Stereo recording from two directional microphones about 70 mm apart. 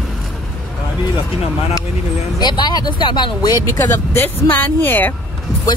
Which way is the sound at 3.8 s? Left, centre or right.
Left.